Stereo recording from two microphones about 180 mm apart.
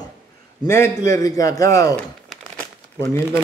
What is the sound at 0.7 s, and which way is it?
Speech, 15° left (ahead or behind).